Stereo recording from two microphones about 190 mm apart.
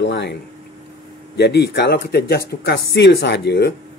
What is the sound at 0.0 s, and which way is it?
Speech, 65° left (ahead or behind).